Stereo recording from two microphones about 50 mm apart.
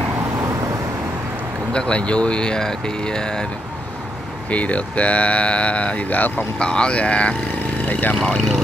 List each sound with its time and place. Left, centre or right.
1.7 s speech: left
4.5 s speech: left
6.6 s speech: centre
8.2 s speech: centre